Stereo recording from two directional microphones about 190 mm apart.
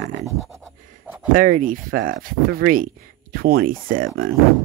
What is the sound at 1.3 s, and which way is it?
Speech, 45° right (ahead or behind).